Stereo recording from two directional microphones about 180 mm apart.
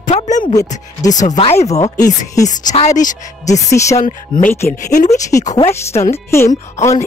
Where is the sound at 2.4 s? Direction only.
40° left (ahead or behind).